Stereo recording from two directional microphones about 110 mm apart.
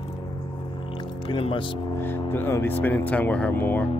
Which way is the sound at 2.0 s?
20° left (ahead or behind).